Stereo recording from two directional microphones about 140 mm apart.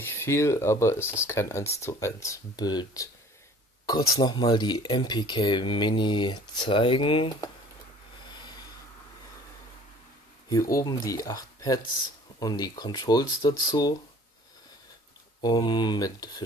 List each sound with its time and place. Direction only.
0.0 s speech: 15° left (ahead or behind); by 7.2 s 40° left (ahead or behind)
10.7 s speech: 25° left (ahead or behind)
15.4 s speech: 30° left (ahead or behind)